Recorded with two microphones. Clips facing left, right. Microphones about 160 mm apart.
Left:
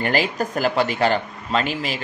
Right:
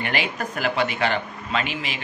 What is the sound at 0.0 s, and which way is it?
Speech, 40° left (ahead or behind).